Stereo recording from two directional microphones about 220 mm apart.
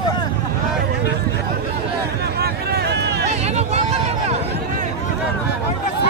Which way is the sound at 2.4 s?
45° right (ahead or behind).